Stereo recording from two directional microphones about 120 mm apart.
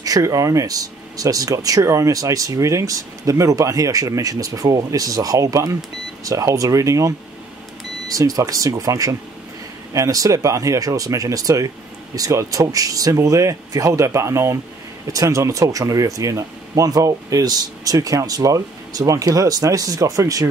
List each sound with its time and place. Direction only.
0.0 s speech: 30° right (ahead or behind)